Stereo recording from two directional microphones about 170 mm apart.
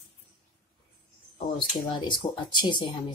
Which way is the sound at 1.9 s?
25° left (ahead or behind).